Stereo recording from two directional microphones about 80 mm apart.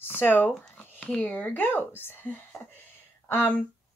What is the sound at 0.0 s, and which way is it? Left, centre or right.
Zipper, left.